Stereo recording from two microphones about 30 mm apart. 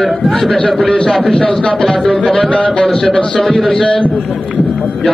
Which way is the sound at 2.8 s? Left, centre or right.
Centre.